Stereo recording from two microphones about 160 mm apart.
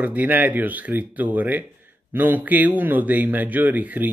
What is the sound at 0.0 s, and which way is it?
Speech, 10° right (ahead or behind).